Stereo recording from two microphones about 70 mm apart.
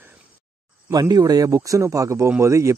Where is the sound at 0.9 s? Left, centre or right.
Right.